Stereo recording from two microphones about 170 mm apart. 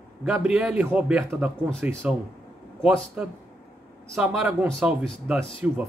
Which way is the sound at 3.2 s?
5° right (ahead or behind).